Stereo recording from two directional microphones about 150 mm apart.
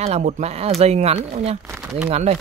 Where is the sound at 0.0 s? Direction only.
45° right (ahead or behind).